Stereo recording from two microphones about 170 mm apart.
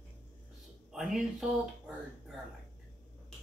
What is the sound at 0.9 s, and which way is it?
Speech, centre (ahead or behind).